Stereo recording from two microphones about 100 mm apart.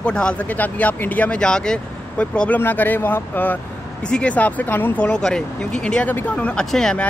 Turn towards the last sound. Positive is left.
turn(degrees=5)  # may be behind; listen again after turning